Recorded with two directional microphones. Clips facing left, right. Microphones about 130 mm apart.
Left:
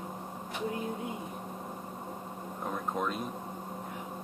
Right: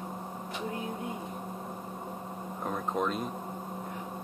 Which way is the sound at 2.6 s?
Centre (ahead or behind).